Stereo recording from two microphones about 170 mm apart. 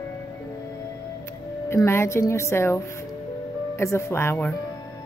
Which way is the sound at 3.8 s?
15° left (ahead or behind).